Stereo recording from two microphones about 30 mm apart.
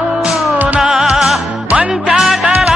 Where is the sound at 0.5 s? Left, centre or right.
Right.